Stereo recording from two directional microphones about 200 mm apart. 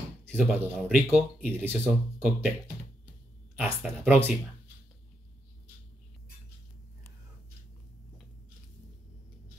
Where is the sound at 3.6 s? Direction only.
10° right (ahead or behind).